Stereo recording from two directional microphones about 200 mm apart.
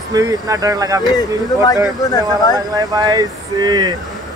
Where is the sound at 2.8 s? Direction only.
20° right (ahead or behind).